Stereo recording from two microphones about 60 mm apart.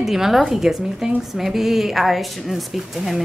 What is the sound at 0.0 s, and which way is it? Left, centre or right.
A woman's voice, centre.